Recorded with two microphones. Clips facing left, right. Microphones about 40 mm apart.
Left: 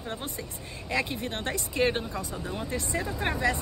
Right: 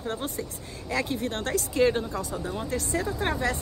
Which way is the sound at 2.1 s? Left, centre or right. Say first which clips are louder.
Right 3 dB; centre.